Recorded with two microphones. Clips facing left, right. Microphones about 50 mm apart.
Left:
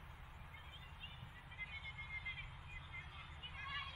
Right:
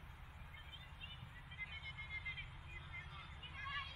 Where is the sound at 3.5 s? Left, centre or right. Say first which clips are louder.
Right 1 dB; centre.